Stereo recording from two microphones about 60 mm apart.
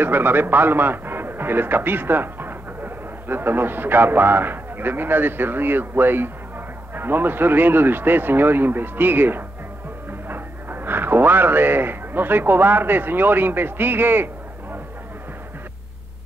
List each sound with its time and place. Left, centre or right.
0.0 s a man's voice: right